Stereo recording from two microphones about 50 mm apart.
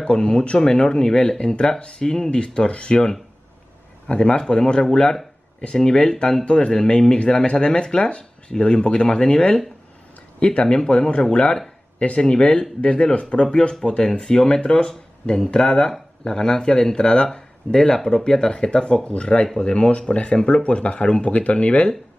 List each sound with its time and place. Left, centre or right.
0.0 s speech: centre